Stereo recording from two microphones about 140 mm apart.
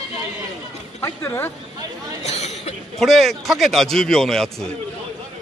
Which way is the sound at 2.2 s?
50° left (ahead or behind).